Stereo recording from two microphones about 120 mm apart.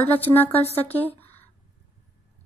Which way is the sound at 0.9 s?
15° left (ahead or behind).